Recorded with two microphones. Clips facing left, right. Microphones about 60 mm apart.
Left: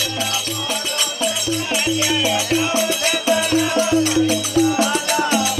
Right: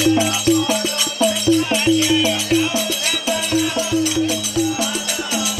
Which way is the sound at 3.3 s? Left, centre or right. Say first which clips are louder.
Left 2 dB; left.